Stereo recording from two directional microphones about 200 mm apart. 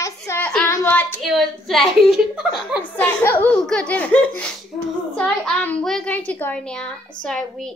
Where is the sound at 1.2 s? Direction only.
Centre (ahead or behind).